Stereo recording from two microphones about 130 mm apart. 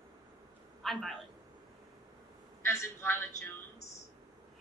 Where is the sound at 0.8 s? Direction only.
Centre (ahead or behind).